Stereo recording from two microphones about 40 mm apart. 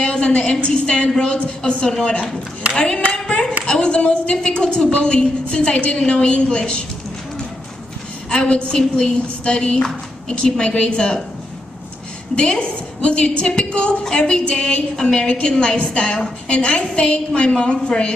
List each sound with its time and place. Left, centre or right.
0.0 s a woman's voice: left
8.3 s a woman's voice: left
12.4 s a woman's voice: left